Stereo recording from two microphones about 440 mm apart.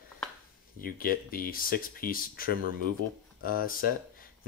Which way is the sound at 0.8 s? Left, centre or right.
Centre.